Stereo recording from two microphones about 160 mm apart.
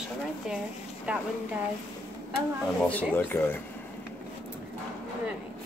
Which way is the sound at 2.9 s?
10° left (ahead or behind).